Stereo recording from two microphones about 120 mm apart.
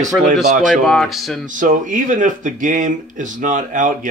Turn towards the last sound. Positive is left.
turn(degrees=-90)